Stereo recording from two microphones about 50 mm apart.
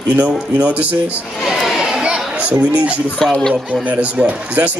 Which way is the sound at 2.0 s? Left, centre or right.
Right.